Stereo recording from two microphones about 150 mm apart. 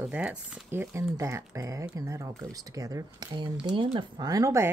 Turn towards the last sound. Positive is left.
turn(degrees=-20)  # may be behind; listen again after turning